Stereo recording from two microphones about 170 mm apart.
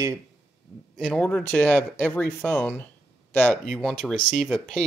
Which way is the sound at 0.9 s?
5° left (ahead or behind).